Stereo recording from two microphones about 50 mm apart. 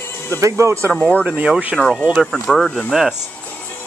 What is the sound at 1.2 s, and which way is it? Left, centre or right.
Speech, right.